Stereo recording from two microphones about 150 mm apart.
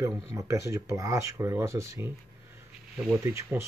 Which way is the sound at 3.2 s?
15° right (ahead or behind).